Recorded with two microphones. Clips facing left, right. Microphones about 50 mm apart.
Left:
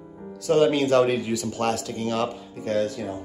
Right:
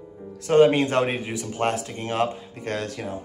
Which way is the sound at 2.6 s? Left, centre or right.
Right.